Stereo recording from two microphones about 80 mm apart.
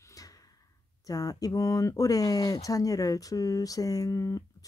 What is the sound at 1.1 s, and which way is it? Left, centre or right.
Speech, left.